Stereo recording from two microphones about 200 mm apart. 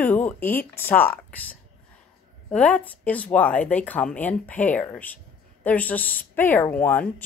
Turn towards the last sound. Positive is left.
turn(degrees=10)  # may be behind; listen again after turning